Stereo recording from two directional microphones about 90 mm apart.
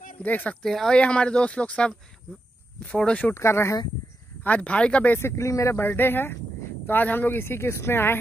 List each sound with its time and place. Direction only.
0.2 s speech: 20° left (ahead or behind)
0.6 s speech: 5° left (ahead or behind)
3.3 s speech: 30° left (ahead or behind)
4.5 s speech: 15° left (ahead or behind)
5.2 s speech: 35° left (ahead or behind)